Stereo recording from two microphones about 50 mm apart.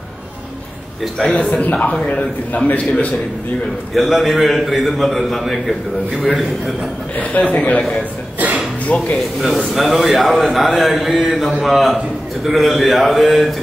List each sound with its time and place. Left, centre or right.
1.2 s a man's voice: left
3.9 s a man's voice: centre
6.2 s a man's voice: centre
7.5 s a man's voice: left
8.8 s speech: left
9.4 s a man's voice: centre